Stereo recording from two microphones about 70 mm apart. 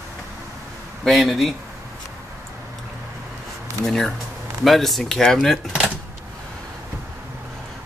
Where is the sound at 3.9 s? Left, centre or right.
Centre.